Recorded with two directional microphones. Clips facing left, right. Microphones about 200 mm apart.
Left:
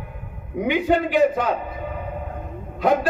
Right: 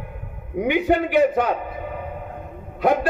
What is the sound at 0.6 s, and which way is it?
Speech, 55° right (ahead or behind).